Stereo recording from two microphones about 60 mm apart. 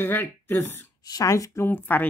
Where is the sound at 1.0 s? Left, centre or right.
Left.